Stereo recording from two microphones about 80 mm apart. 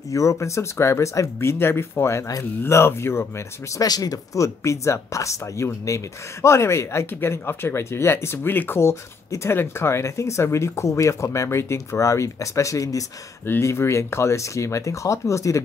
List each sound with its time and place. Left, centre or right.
0.1 s speech: left
3.8 s speech: left
13.5 s speech: left